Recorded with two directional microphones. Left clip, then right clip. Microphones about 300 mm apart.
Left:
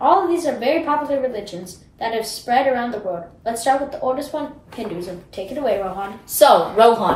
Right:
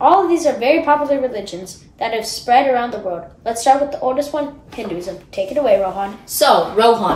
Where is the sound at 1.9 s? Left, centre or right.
Centre.